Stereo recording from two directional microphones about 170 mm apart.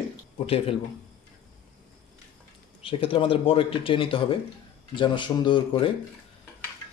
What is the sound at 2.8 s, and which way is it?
A man's voice, 30° left (ahead or behind).